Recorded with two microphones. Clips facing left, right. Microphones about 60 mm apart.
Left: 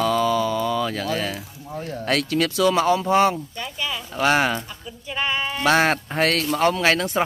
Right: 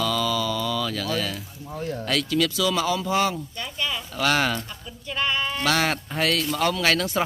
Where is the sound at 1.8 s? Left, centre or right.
Centre.